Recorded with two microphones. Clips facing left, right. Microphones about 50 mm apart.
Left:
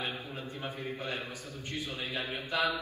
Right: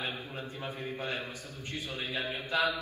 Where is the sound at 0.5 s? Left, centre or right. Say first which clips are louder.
Even; left.